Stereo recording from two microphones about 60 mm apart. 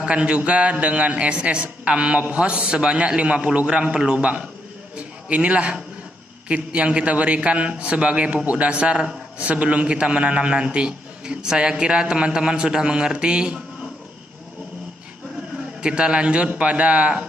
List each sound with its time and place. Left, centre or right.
0.0 s a man's voice: centre
4.9 s a sound: centre
6.5 s a man's voice: centre
15.8 s a man's voice: centre